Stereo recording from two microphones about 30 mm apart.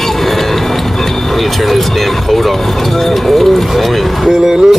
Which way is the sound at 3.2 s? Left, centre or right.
Centre.